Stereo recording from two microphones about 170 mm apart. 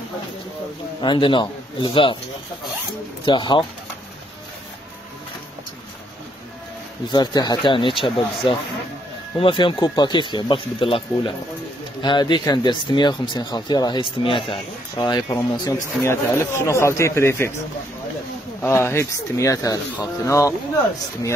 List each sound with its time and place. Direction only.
1.0 s speech: 30° left (ahead or behind)
3.3 s speech: 30° left (ahead or behind)
7.1 s speech: 25° left (ahead or behind)
18.6 s speech: 15° left (ahead or behind)